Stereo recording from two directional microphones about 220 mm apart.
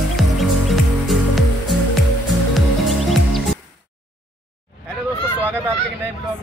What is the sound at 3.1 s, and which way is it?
Music, centre (ahead or behind).